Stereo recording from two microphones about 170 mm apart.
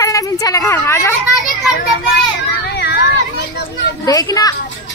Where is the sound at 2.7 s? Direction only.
75° left (ahead or behind).